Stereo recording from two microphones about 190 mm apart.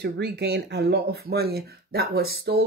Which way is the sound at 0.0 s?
60° right (ahead or behind).